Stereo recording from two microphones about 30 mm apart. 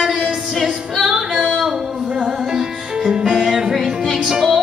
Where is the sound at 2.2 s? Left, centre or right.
Right.